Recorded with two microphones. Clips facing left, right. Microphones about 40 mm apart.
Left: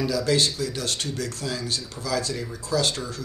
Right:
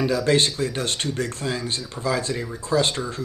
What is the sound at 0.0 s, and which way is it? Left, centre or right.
Speech, right.